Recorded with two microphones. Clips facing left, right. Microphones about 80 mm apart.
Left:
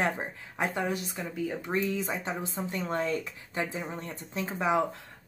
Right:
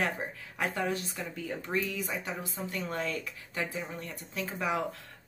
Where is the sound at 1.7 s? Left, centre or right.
Left.